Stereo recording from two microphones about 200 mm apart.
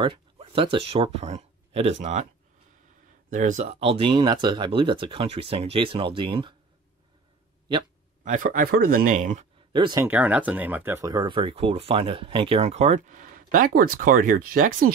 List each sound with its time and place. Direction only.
0.0 s speech: 25° right (ahead or behind)
3.3 s speech: 40° right (ahead or behind)
8.2 s speech: 40° right (ahead or behind)
9.7 s speech: 25° right (ahead or behind)
10.0 s speech: 5° right (ahead or behind); by 14.9 s 45° right (ahead or behind)